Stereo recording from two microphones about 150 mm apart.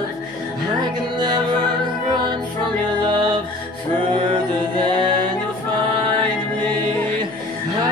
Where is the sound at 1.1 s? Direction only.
30° right (ahead or behind).